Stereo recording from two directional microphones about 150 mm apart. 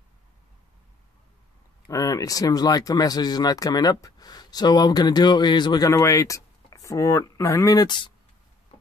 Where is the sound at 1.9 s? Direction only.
25° left (ahead or behind).